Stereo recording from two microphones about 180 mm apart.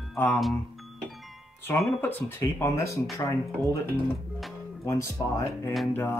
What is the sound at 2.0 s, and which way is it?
Speech, 10° left (ahead or behind).